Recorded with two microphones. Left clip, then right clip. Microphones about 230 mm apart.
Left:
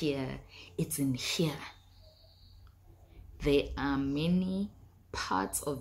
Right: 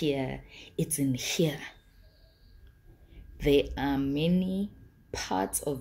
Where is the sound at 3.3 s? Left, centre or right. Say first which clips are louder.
Right 4 dB; centre.